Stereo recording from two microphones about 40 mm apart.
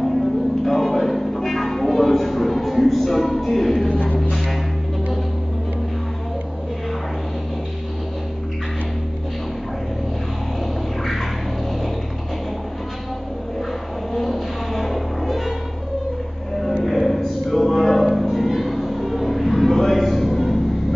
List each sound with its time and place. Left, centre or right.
0.7 s music: centre
3.9 s music: left
14.1 s music: centre
16.8 s music: centre